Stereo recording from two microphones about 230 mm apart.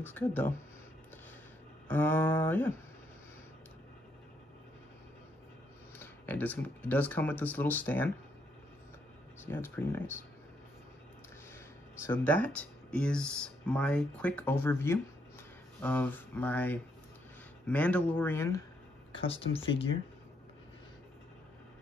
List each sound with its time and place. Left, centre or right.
0.0 s speech: centre
1.9 s speech: centre
5.9 s speech: centre
9.5 s speech: centre
12.0 s speech: centre
19.1 s speech: left